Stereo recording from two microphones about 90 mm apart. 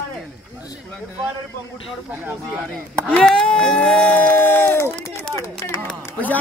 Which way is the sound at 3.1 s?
10° left (ahead or behind).